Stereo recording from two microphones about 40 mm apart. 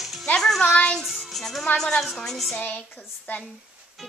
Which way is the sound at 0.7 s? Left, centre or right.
Left.